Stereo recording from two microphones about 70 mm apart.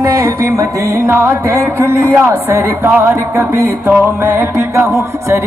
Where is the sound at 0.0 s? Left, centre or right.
Right.